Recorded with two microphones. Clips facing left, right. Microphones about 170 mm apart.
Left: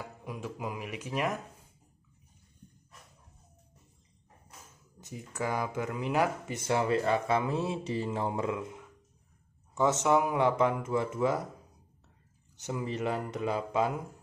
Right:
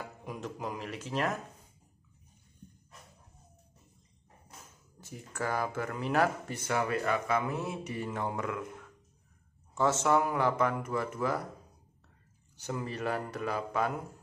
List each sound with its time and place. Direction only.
0.2 s speech: 5° left (ahead or behind)
5.0 s speech: 20° left (ahead or behind)
12.5 s speech: 20° left (ahead or behind)